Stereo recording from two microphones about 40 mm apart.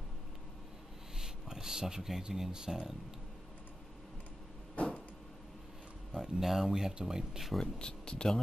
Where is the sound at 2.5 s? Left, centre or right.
Centre.